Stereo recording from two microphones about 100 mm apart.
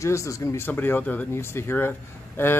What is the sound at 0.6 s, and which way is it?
Speech, 20° left (ahead or behind).